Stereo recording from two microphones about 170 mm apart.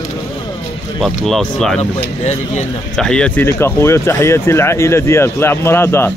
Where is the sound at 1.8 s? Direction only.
40° left (ahead or behind).